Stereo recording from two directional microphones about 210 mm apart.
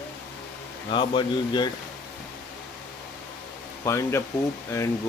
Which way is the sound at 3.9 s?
15° left (ahead or behind).